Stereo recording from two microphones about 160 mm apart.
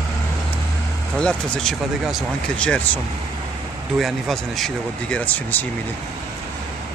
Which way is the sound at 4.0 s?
Centre (ahead or behind).